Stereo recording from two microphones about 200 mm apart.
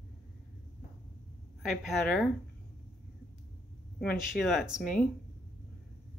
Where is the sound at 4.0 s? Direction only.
Centre (ahead or behind).